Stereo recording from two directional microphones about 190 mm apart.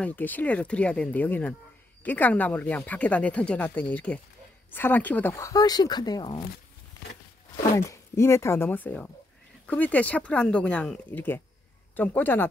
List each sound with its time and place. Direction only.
0.0 s speech: 10° left (ahead or behind)
7.7 s speech: 15° left (ahead or behind)